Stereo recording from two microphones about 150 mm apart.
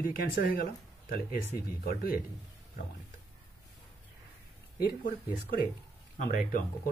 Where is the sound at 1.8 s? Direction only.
80° left.